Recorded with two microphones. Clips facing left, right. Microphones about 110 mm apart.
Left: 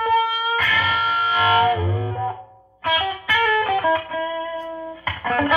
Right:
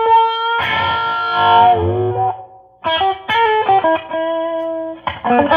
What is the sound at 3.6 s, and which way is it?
Music, 50° right (ahead or behind).